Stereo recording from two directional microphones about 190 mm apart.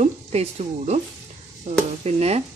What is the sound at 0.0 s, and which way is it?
Speech, 35° right (ahead or behind).